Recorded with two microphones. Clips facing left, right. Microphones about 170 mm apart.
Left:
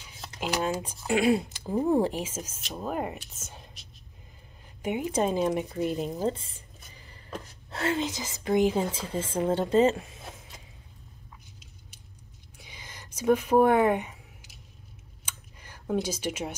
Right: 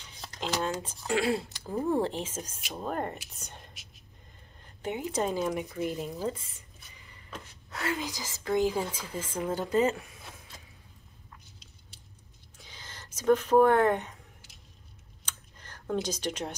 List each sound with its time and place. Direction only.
0.0 s speech: 5° left (ahead or behind)
4.8 s speech: 20° left (ahead or behind)
6.8 s gasp: 35° left (ahead or behind)
7.8 s speech: 25° left (ahead or behind)
12.5 s a sound: 10° left (ahead or behind)